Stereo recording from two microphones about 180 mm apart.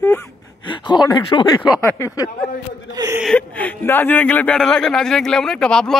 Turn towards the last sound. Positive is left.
turn(degrees=5)  # may be behind; listen again after turning